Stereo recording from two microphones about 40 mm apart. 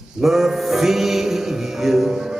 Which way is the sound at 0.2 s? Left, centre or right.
Centre.